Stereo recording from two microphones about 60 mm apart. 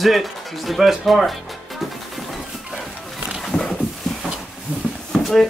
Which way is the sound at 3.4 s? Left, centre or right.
Centre.